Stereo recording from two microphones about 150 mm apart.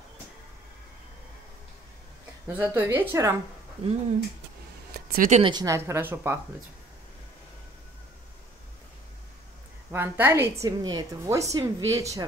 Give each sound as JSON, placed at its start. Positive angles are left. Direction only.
{"t": 2.4, "sound": "a woman's voice", "side_deg": -15}
{"t": 4.9, "sound": "a sound", "side_deg": -70}
{"t": 5.4, "sound": "a woman's voice", "side_deg": -30}
{"t": 5.8, "sound": "a woman's voice", "side_deg": -15}
{"t": 9.8, "sound": "a woman's voice", "side_deg": -15}